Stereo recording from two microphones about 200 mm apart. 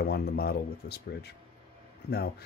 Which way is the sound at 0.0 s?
50° left (ahead or behind).